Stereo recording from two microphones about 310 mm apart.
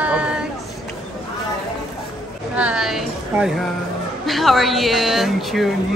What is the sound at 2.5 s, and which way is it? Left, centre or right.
Speech, centre.